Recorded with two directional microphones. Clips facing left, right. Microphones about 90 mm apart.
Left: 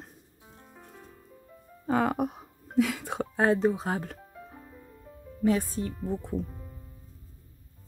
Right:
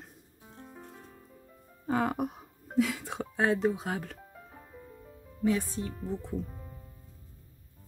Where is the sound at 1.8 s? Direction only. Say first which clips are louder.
Left 3 dB; 90° left.